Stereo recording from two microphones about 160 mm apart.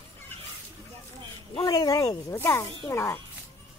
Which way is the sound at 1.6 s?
25° left (ahead or behind).